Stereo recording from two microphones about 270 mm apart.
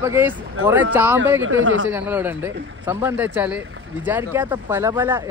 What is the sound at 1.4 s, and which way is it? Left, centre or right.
Speech, right.